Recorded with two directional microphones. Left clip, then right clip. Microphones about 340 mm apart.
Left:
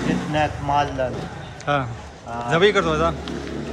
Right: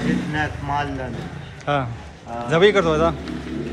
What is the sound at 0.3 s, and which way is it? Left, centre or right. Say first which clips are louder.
Speech: left 3 dB; left.